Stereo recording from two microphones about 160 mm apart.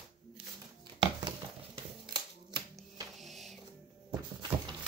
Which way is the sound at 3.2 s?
Centre (ahead or behind).